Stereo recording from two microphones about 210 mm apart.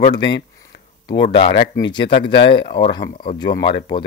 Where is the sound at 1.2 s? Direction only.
25° left (ahead or behind).